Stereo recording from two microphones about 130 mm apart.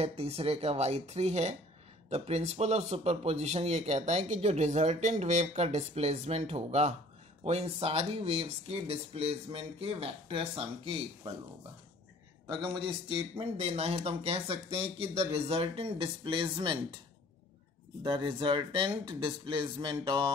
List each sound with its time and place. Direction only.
0.0 s a man's voice: 50° right (ahead or behind)
12.4 s a man's voice: 35° right (ahead or behind)
18.0 s speech: 40° right (ahead or behind)